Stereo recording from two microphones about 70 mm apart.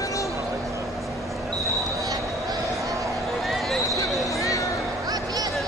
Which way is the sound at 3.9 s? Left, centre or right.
Left.